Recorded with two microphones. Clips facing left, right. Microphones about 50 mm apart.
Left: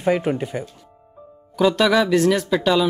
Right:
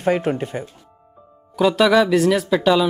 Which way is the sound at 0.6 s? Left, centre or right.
Right.